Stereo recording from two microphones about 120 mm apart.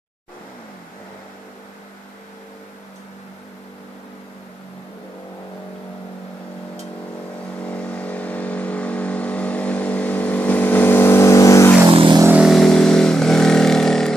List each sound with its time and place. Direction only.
7.6 s vehicle: 10° left (ahead or behind); by 11.7 s 25° left (ahead or behind)
11.9 s vehicle: 50° right (ahead or behind)
12.3 s vehicle: 10° right (ahead or behind)
12.5 s vehicle: 5° left (ahead or behind)